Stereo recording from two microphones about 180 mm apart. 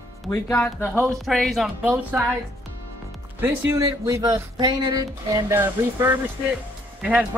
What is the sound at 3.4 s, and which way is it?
Speech, 15° right (ahead or behind).